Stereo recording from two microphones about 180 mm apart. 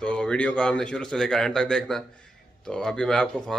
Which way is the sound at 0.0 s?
5° left (ahead or behind).